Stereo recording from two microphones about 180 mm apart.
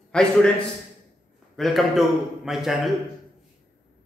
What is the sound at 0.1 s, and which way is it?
Speech, 5° left (ahead or behind).